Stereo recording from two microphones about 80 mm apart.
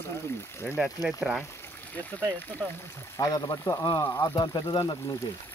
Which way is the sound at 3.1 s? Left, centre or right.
Left.